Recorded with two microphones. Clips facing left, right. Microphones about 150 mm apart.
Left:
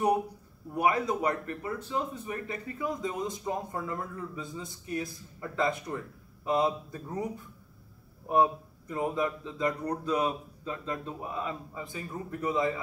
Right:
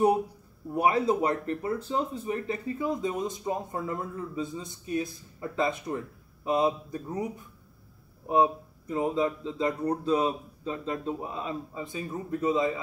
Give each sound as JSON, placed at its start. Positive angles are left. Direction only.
{"t": 0.7, "sound": "speech", "side_deg": -30}
{"t": 8.3, "sound": "speech", "side_deg": -20}